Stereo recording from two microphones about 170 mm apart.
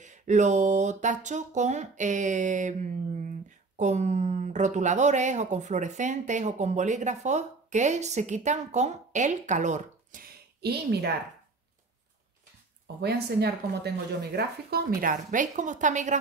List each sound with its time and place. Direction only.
0.0 s speech: 45° right (ahead or behind)
10.6 s a woman's voice: 75° right (ahead or behind)
13.0 s speech: 75° right (ahead or behind); by 16.2 s 45° right (ahead or behind)